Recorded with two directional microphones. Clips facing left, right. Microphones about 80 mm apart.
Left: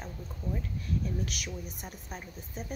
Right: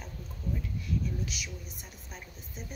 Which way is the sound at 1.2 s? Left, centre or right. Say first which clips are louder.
Left 2 dB; left.